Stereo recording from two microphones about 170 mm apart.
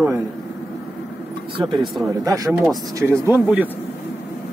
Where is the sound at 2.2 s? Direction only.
20° right (ahead or behind).